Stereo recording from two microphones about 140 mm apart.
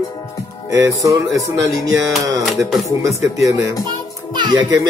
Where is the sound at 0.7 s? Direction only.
20° right (ahead or behind).